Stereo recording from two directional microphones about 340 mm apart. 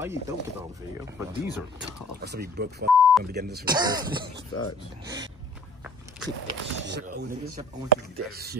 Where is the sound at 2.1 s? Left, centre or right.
Right.